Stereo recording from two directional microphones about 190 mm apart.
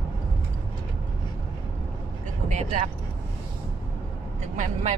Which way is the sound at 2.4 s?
35° right (ahead or behind).